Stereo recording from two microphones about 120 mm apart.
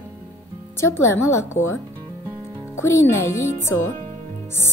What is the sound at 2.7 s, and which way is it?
A woman's voice, 20° left (ahead or behind).